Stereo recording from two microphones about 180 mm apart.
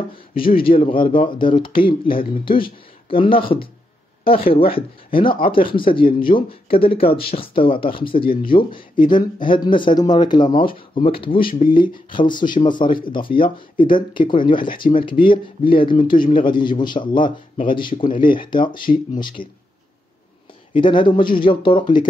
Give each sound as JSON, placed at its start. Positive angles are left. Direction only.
{"t": 0.7, "sound": "speech", "side_deg": 30}
{"t": 20.7, "sound": "speech", "side_deg": 30}